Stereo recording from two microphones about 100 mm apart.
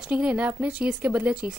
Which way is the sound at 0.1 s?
10° right (ahead or behind).